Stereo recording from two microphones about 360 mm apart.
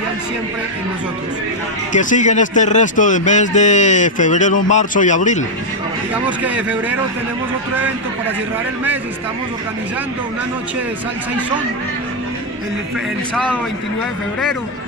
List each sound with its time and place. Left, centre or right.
1.9 s a man's voice: left
6.1 s speech: centre
13.3 s speech: centre